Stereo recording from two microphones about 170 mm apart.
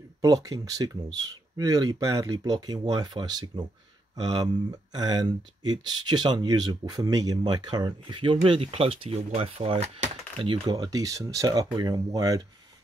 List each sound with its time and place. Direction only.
0.2 s speech: 20° right (ahead or behind)